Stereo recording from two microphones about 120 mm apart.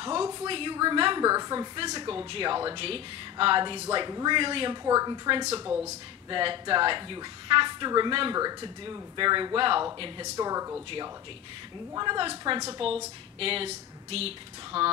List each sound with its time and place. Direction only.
0.0 s a woman's voice: 35° right (ahead or behind)
0.5 s a woman's voice: 45° right (ahead or behind)
4.8 s speech: 30° right (ahead or behind)
6.3 s a woman's voice: 45° right (ahead or behind)
10.3 s speech: 30° right (ahead or behind)
11.9 s a woman's voice: 35° right (ahead or behind); by 14.9 s 55° right (ahead or behind)